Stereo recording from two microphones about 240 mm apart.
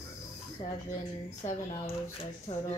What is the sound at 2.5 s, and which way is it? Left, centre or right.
Speech, left.